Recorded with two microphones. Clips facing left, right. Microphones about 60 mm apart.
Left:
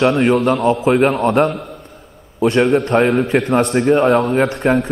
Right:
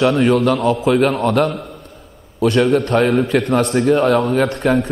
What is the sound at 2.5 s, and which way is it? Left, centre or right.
A man's voice, centre.